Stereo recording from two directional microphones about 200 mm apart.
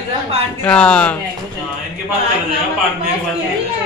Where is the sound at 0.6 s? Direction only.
5° left (ahead or behind).